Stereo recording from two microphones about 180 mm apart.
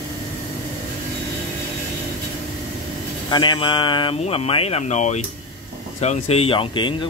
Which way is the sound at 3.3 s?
25° left (ahead or behind).